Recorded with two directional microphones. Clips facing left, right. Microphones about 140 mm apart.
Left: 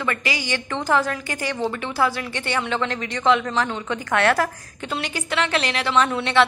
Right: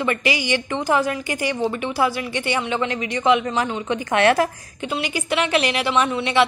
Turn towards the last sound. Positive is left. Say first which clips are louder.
# even
turn(degrees=-5)  # may be behind; listen again after turning